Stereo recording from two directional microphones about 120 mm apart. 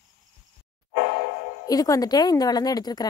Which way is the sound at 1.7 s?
30° left (ahead or behind).